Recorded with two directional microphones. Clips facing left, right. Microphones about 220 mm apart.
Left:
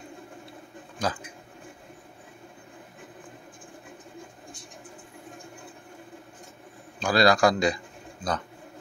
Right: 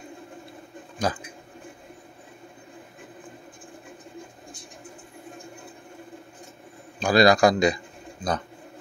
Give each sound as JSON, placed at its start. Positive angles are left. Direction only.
{"t": 1.1, "sound": "speech", "side_deg": -15}
{"t": 7.0, "sound": "a man's voice", "side_deg": -15}